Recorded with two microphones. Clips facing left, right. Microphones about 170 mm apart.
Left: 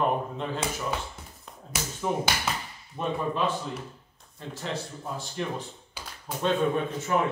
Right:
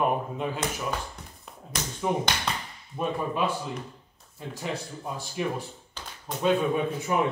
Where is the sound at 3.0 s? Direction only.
10° right (ahead or behind).